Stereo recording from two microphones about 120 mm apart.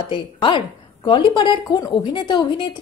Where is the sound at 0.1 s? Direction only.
45° left (ahead or behind).